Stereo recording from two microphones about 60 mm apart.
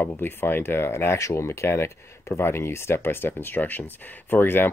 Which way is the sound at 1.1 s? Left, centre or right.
Left.